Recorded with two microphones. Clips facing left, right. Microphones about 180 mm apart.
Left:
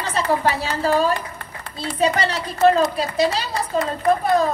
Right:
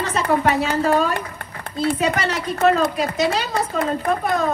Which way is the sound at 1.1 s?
55° right (ahead or behind).